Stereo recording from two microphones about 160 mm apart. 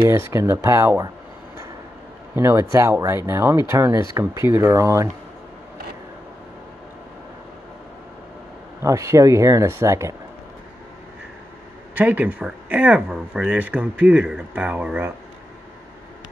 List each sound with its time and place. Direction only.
0.1 s speech: 15° right (ahead or behind)
2.3 s speech: 15° right (ahead or behind)
8.8 s speech: 20° right (ahead or behind)
11.9 s speech: 10° right (ahead or behind)